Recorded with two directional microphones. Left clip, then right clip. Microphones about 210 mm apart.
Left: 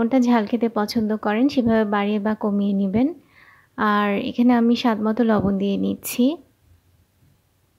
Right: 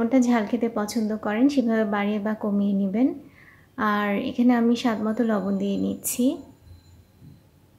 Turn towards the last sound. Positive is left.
turn(degrees=35)  # may be behind; listen again after turning